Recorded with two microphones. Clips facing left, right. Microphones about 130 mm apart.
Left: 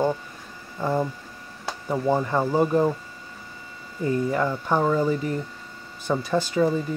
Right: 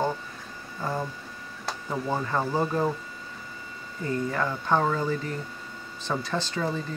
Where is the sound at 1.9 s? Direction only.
15° left (ahead or behind).